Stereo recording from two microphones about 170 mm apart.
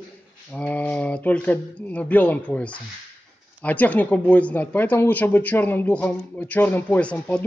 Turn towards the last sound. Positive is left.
turn(degrees=5)  # may be behind; listen again after turning